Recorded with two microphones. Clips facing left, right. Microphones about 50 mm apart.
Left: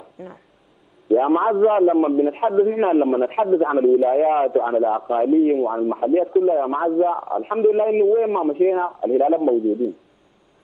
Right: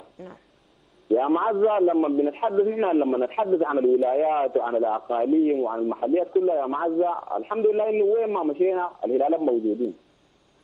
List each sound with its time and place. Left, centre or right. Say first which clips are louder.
0.2 s a man's voice: left 4 dB; centre
9.6 s speech: left 4 dB; centre